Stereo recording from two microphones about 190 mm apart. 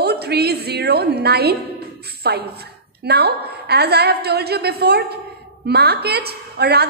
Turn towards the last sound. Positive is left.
turn(degrees=-55)  # may be behind; listen again after turning